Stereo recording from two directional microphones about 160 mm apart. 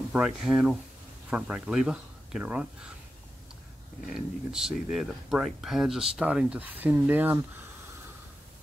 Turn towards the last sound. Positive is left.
turn(degrees=-10)  # may be behind; listen again after turning